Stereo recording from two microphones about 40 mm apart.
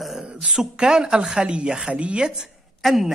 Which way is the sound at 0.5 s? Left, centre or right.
Centre.